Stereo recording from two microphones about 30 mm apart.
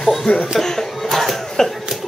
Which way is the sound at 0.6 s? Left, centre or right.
Centre.